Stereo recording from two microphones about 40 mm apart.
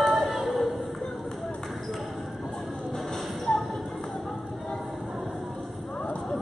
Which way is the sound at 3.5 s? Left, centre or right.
Left.